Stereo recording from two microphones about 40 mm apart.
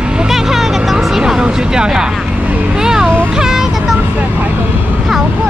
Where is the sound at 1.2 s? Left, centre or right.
Centre.